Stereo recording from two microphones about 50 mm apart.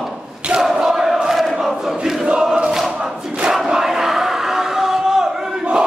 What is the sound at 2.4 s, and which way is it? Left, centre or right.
Choir, centre.